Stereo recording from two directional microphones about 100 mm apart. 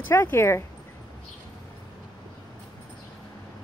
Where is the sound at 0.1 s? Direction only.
25° left (ahead or behind).